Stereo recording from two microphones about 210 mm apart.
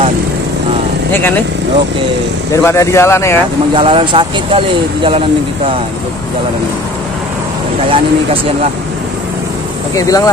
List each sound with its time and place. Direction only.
1.1 s speech: 10° left (ahead or behind)
2.6 s speech: 15° left (ahead or behind)
3.7 s speech: 25° right (ahead or behind)
9.9 s speech: 15° left (ahead or behind)